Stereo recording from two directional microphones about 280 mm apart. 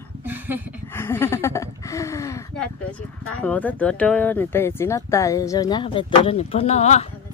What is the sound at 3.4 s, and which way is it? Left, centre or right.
Speech, centre.